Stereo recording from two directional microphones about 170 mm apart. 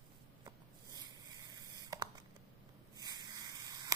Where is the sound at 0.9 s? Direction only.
25° right (ahead or behind).